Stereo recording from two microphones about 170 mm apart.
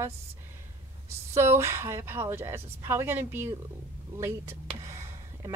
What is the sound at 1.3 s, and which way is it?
Speech, 15° right (ahead or behind).